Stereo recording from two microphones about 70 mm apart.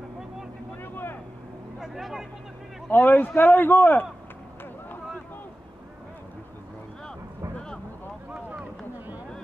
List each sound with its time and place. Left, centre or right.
0.8 s vehicle: left
1.8 s vehicle: centre
2.9 s a man's voice: left
7.5 s boat: centre
8.3 s a sound: centre